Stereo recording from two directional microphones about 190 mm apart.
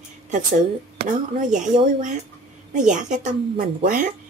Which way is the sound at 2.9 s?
40° right (ahead or behind).